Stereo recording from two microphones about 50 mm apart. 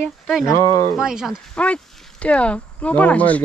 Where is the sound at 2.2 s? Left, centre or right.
Left.